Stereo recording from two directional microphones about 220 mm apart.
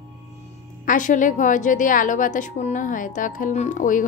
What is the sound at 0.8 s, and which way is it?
A woman's voice, 35° left (ahead or behind).